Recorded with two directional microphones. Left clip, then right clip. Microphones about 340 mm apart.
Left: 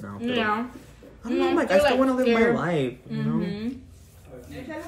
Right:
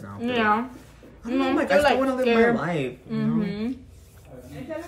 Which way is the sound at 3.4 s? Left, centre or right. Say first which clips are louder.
Right 1 dB; centre.